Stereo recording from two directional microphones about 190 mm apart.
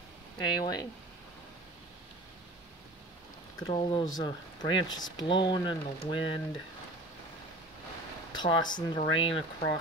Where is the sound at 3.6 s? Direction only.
25° left (ahead or behind).